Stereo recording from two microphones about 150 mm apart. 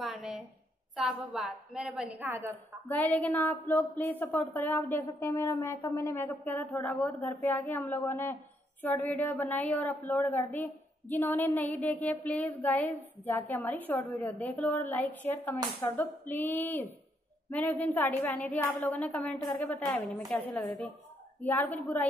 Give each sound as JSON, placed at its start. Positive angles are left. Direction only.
{"t": 0.0, "sound": "a sound", "side_deg": 0}
{"t": 0.9, "sound": "a woman's voice", "side_deg": -5}
{"t": 2.5, "sound": "a woman's voice", "side_deg": 10}
{"t": 4.6, "sound": "a woman's voice", "side_deg": 15}
{"t": 21.4, "sound": "a woman's voice", "side_deg": 10}